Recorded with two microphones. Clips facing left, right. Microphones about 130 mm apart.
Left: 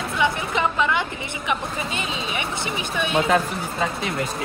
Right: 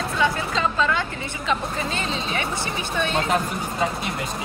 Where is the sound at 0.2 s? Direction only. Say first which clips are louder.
Left 1 dB; 20° left (ahead or behind).